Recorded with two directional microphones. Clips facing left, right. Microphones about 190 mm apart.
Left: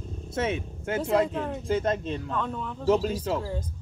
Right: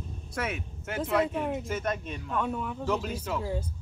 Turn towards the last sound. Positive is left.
turn(degrees=30)  # may be behind; listen again after turning